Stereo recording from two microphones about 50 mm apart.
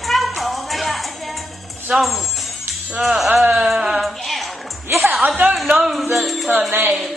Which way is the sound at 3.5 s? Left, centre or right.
Centre.